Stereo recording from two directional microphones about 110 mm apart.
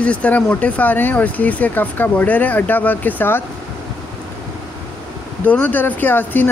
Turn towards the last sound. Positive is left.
turn(degrees=15)  # may be behind; listen again after turning